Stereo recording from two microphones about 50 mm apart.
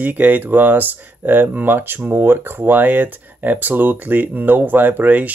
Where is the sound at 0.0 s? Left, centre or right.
Right.